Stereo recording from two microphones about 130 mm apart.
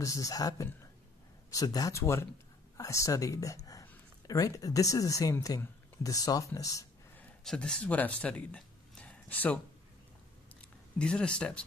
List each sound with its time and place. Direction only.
0.0 s speech: 25° left (ahead or behind)
7.4 s speech: 5° left (ahead or behind)
10.6 s speech: 5° left (ahead or behind)